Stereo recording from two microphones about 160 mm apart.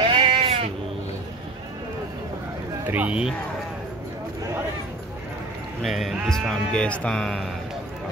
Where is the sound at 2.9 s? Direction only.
10° right (ahead or behind).